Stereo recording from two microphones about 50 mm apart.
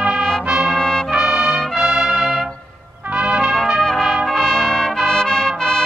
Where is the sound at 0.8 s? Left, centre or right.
Centre.